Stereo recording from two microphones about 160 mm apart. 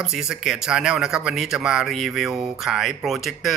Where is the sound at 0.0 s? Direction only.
5° right (ahead or behind).